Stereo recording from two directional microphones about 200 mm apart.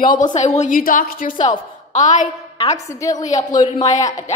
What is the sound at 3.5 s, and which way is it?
Speech, 35° left (ahead or behind).